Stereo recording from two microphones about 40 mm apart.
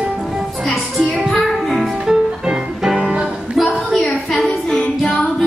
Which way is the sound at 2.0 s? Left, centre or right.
Centre.